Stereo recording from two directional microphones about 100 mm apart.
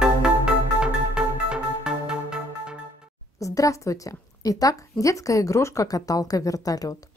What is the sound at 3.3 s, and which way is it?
A woman's voice, 35° left (ahead or behind).